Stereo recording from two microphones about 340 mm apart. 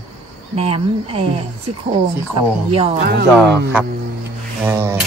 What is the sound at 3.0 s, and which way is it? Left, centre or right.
Speech, right.